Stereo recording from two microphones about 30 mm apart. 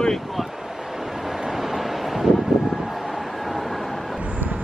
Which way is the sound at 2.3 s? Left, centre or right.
Centre.